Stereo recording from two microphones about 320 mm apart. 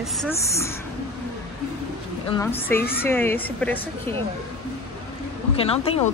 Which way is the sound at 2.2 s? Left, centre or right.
Centre.